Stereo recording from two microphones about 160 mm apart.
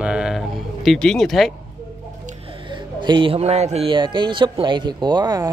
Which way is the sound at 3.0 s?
30° right (ahead or behind).